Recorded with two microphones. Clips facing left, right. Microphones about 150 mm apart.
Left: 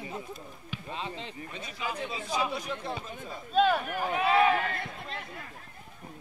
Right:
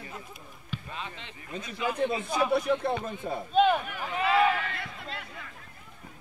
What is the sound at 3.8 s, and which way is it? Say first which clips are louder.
Speech: left 1 dB; 45° left (ahead or behind).